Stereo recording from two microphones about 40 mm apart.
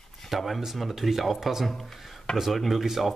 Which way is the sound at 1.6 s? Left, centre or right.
Centre.